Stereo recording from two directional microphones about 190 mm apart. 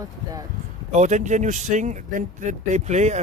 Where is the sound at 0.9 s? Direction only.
40° right (ahead or behind).